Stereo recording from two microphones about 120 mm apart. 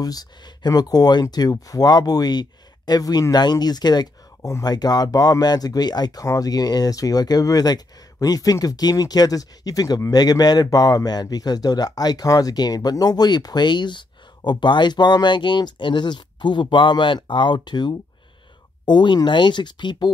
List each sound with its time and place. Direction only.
0.0 s speech: 35° left (ahead or behind)